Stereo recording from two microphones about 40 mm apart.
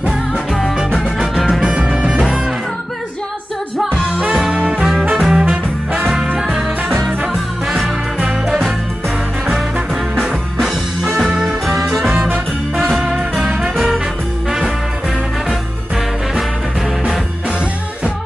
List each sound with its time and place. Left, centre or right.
1.5 s music: right
4.6 s music: centre
5.4 s swing music: right
6.3 s music: centre
7.6 s music: centre
11.1 s music: centre